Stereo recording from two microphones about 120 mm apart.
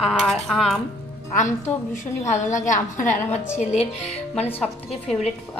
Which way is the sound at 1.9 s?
75° left (ahead or behind).